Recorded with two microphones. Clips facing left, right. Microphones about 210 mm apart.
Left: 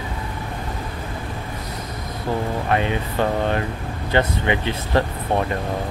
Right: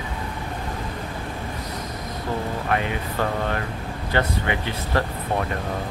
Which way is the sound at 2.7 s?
25° left (ahead or behind).